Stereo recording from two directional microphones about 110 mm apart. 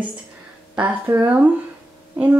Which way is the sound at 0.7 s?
15° right (ahead or behind).